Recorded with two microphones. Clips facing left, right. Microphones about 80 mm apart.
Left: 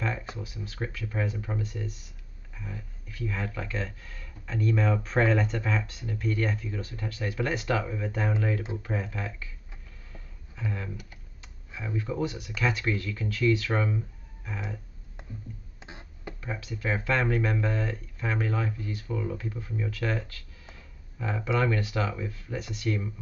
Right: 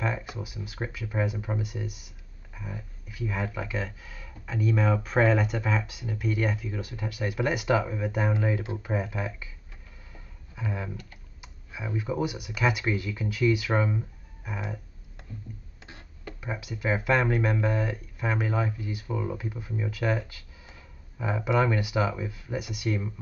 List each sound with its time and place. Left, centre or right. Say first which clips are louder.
0.0 s speech: right 2 dB; centre
10.1 s a sound: right 2 dB; centre
11.4 s speech: right 1 dB; centre
14.4 s a sound: right 2 dB; centre
15.8 s music: left 2 dB; centre
16.3 s speech: right 2 dB; centre